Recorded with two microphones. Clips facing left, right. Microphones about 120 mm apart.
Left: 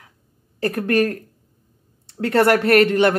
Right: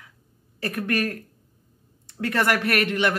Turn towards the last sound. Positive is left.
turn(degrees=40)  # may be behind; listen again after turning